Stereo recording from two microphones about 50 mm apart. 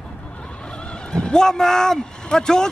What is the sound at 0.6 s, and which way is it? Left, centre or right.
Speech, centre.